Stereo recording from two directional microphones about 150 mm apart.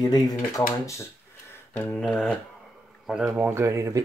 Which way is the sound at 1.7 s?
5° left (ahead or behind).